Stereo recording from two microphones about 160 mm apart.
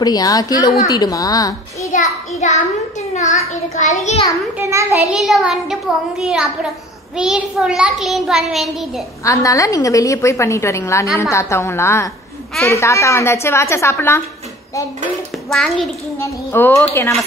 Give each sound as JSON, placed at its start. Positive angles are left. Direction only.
{"t": 0.0, "sound": "a woman's voice", "side_deg": 25}
{"t": 1.9, "sound": "a sound", "side_deg": 50}
{"t": 3.7, "sound": "a child's voice", "side_deg": 45}
{"t": 4.6, "sound": "a child's voice", "side_deg": -15}
{"t": 5.1, "sound": "a child's voice", "side_deg": 0}
{"t": 9.2, "sound": "a woman's voice", "side_deg": 20}
{"t": 15.5, "sound": "a child's voice", "side_deg": 0}
{"t": 16.2, "sound": "a woman's voice", "side_deg": 15}